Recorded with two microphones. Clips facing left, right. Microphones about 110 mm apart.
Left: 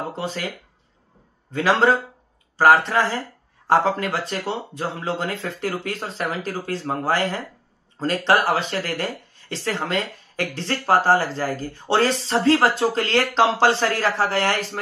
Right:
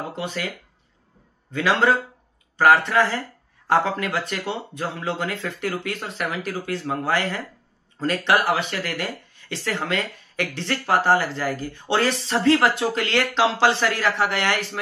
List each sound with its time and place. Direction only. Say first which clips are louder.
0.1 s speech: left 1 dB; 35° left (ahead or behind)
1.5 s speech: left 2 dB; 30° left (ahead or behind)